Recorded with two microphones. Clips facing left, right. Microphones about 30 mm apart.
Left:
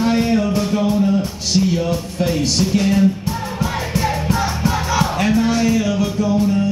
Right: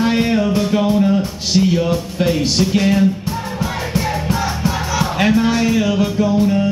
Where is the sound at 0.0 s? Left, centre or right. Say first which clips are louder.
Right 1 dB; right.